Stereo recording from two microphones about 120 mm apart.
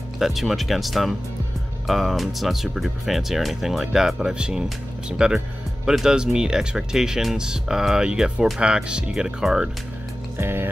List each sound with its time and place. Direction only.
0.2 s speech: centre (ahead or behind)
10.3 s music: 20° right (ahead or behind)